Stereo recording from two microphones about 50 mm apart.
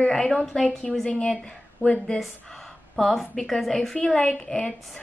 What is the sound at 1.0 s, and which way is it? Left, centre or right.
Speech, centre.